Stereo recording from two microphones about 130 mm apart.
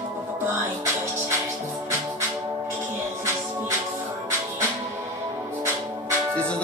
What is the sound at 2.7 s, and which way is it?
Music, 20° right (ahead or behind).